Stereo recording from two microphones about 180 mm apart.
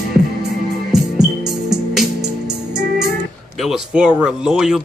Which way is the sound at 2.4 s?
70° right (ahead or behind).